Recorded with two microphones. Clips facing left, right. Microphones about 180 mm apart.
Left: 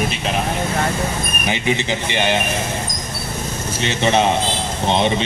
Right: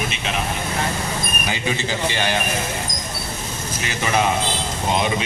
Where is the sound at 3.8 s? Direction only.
25° left (ahead or behind).